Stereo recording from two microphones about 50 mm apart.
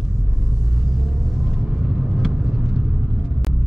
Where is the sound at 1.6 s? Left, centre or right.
Centre.